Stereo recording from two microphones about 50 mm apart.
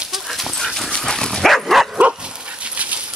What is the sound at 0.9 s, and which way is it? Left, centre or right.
Dog, centre.